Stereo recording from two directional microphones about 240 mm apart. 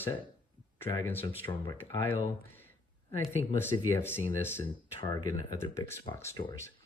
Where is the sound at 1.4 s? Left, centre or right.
Left.